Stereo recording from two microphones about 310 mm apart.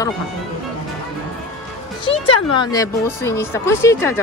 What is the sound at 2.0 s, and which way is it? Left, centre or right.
A woman's voice, centre.